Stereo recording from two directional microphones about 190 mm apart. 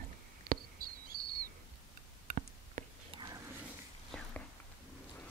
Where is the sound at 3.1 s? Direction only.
20° right (ahead or behind).